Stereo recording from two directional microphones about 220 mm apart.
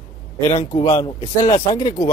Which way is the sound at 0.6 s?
25° left (ahead or behind).